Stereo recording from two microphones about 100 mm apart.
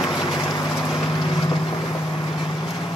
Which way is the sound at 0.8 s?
Centre (ahead or behind).